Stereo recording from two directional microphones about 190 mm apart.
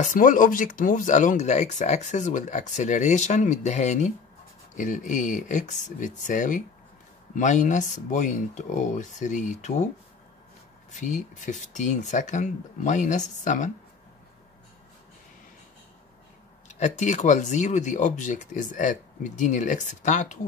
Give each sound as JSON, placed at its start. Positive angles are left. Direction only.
{"t": 0.0, "sound": "speech", "side_deg": 45}
{"t": 10.9, "sound": "speech", "side_deg": 40}
{"t": 16.6, "sound": "speech", "side_deg": 40}